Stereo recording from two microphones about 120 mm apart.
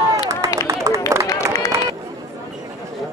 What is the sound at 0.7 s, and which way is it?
Run, 25° right (ahead or behind).